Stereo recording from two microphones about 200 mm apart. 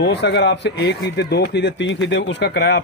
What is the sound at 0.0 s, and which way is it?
Speech, 60° left (ahead or behind).